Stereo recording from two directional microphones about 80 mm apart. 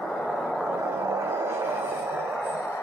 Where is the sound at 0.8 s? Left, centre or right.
Right.